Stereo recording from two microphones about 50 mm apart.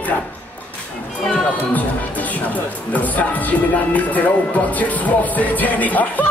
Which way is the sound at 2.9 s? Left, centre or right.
Left.